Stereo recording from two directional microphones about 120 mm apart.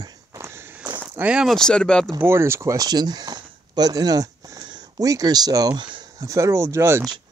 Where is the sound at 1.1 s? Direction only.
10° right (ahead or behind).